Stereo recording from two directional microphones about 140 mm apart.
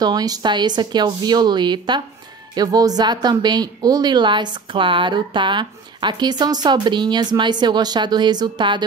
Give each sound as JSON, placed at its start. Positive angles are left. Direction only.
{"t": 0.0, "sound": "a woman's voice", "side_deg": -30}